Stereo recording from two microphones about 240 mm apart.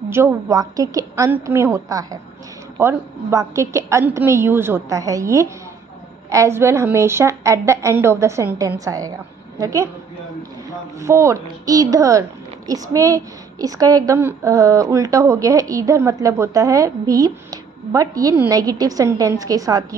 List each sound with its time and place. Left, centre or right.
0.1 s a woman's voice: centre
11.0 s a woman's voice: centre